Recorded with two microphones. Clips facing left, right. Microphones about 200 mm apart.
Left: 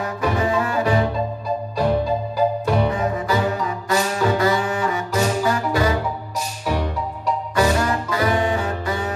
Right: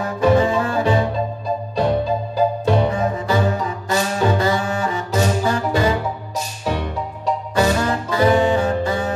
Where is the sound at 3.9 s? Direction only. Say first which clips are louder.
Right 1 dB; 30° right (ahead or behind).